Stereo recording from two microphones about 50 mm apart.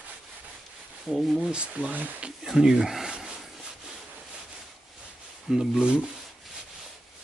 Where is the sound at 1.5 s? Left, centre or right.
Right.